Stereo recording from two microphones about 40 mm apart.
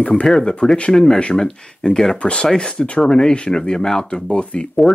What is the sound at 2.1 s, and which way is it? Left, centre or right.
Speech, left.